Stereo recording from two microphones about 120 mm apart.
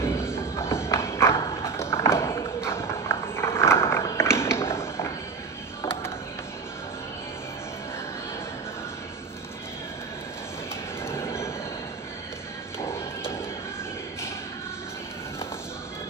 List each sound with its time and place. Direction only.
0.0 s clip-clop: 20° left (ahead or behind)
11.1 s train: 20° left (ahead or behind)
12.7 s music: 20° left (ahead or behind)